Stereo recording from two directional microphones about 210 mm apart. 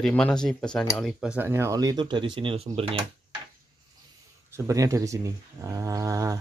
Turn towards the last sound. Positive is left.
turn(degrees=-15)  # may be behind; listen again after turning